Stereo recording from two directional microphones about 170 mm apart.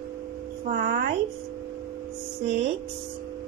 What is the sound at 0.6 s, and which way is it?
Speech, 55° right (ahead or behind).